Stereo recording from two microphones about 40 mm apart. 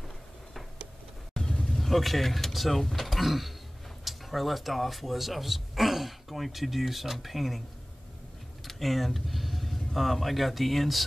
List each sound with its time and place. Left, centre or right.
1.5 s vehicle: centre
1.8 s speech: centre
8.6 s speech: centre